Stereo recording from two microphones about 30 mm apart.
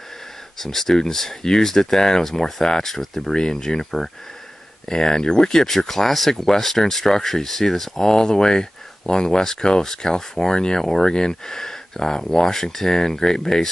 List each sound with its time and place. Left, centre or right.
0.6 s speech: centre
3.3 s speech: left; by 8.1 s centre
8.1 s speech: left